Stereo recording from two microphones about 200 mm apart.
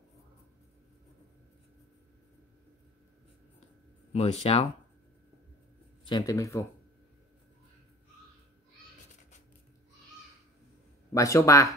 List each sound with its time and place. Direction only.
4.1 s speech: 30° left (ahead or behind)
6.0 s speech: 20° left (ahead or behind)
11.1 s speech: 15° left (ahead or behind)